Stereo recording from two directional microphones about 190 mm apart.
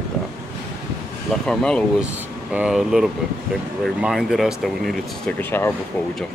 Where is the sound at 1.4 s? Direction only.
5° left (ahead or behind).